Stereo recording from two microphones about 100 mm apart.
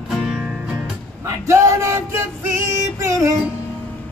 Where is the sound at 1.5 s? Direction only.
30° right (ahead or behind).